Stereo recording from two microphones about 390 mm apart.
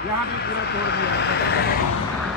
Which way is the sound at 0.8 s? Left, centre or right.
Left.